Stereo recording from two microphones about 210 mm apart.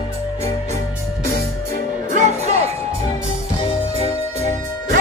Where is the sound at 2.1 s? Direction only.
35° right (ahead or behind).